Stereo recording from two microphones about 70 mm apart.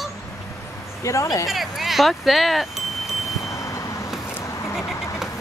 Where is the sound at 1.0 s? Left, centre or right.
Left.